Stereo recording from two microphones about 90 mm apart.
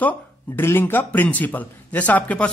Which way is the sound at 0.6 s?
25° left (ahead or behind).